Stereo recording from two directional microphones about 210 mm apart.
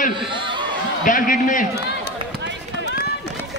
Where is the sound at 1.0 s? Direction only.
40° left (ahead or behind).